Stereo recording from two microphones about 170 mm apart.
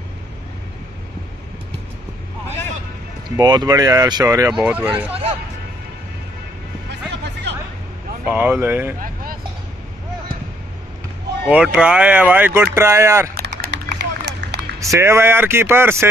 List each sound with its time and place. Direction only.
3.3 s speech: 25° right (ahead or behind)
4.5 s speech: 5° right (ahead or behind)
6.9 s music: 85° right
8.3 s speech: 10° right (ahead or behind)
9.0 s vehicle: 55° right (ahead or behind)
11.5 s speech: 5° right (ahead or behind)
13.3 s run: 65° right (ahead or behind); by 14.6 s 85° right
14.8 s speech: 15° right (ahead or behind)